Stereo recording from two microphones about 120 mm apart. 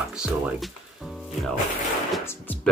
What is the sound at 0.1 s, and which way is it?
Speech, 5° right (ahead or behind).